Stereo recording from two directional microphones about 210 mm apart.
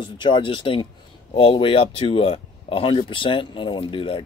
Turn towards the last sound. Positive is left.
turn(degrees=25)  # may be behind; listen again after turning